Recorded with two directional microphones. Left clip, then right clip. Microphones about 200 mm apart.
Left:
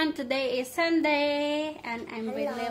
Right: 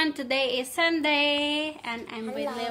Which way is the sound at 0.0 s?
Centre (ahead or behind).